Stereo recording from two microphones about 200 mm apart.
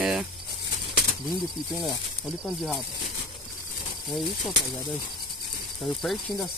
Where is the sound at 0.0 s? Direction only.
5° right (ahead or behind).